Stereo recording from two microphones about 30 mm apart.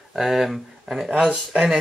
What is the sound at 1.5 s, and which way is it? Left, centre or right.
Speech, right.